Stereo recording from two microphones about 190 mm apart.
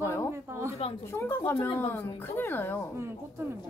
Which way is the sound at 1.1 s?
10° left (ahead or behind).